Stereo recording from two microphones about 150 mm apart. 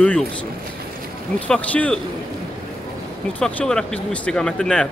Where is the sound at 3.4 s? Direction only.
5° left (ahead or behind).